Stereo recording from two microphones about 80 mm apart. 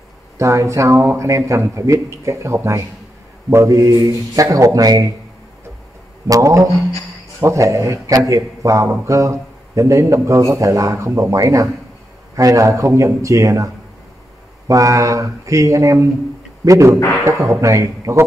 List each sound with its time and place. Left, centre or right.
0.4 s a man's voice: right
6.2 s a man's voice: right
14.7 s a man's voice: right